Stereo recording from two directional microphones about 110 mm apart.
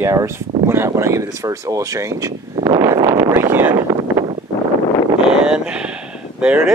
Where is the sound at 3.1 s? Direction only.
25° right (ahead or behind).